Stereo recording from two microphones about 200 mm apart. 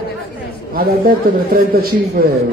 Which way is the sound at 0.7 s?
45° right (ahead or behind).